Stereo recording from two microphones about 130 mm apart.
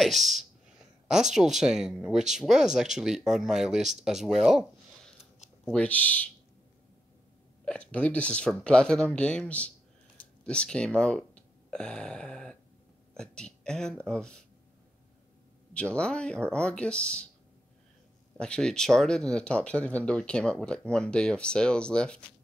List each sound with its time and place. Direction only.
0.0 s speech: centre (ahead or behind)
5.7 s speech: 10° left (ahead or behind)
7.6 s speech: 10° left (ahead or behind)
10.1 s a sound: 10° left (ahead or behind)
11.0 s speech: 10° left (ahead or behind)
15.7 s speech: 10° left (ahead or behind)
18.4 s speech: 5° left (ahead or behind)